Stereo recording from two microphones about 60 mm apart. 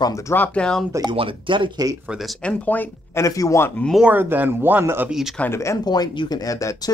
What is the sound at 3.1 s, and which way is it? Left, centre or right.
Speech, left.